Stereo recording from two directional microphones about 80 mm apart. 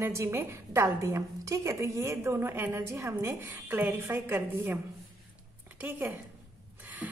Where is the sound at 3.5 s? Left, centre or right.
Right.